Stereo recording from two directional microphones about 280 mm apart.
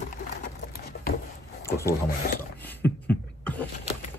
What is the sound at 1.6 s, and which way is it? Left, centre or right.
Wood, centre.